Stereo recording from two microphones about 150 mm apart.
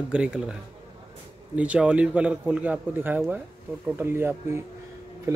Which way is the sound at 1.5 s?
10° right (ahead or behind).